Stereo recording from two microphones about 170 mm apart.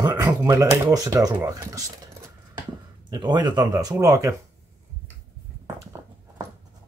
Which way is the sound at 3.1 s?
25° right (ahead or behind).